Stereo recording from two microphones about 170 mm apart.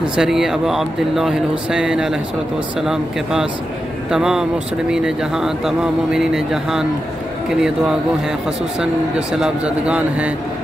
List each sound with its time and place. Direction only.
0.0 s speech: 5° right (ahead or behind)
9.3 s speech: 5° right (ahead or behind)